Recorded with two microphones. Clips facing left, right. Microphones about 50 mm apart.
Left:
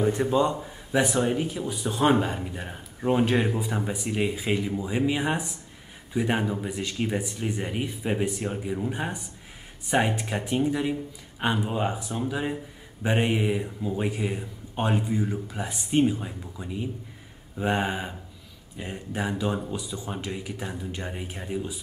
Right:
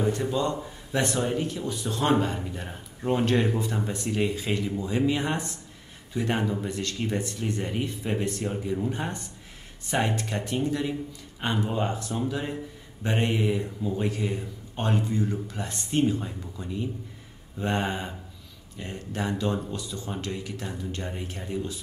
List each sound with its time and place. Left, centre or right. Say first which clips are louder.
0.0 s a man's voice: left 3 dB; left
0.9 s speech: left 3 dB; centre